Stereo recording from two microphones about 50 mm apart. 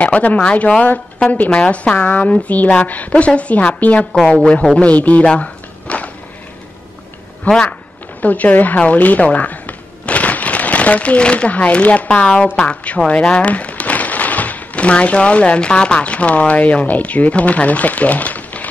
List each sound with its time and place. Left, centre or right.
0.0 s a woman's voice: left
4.0 s a woman's voice: centre
4.9 s speech: left
5.2 s a sound: left
7.5 s a woman's voice: left